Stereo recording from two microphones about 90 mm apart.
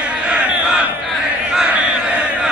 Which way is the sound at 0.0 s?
10° right (ahead or behind).